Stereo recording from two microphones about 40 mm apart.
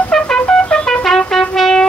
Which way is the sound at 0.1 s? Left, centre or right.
Centre.